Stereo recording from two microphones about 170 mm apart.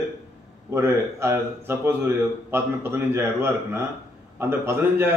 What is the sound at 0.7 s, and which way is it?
A man's voice, 15° right (ahead or behind).